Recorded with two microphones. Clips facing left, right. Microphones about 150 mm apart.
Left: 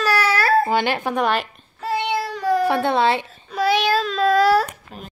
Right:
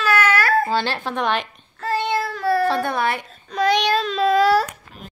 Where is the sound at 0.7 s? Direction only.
15° left (ahead or behind).